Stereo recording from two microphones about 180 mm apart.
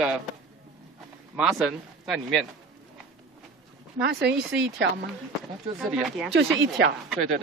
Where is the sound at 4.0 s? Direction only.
70° right (ahead or behind).